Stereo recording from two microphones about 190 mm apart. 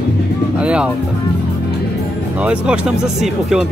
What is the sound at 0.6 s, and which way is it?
Speech, 5° right (ahead or behind).